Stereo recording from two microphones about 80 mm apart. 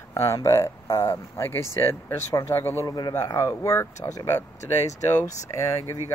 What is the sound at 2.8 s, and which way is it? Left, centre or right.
Speech, left.